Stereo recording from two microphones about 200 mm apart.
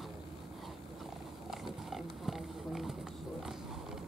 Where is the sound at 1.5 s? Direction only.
Centre (ahead or behind).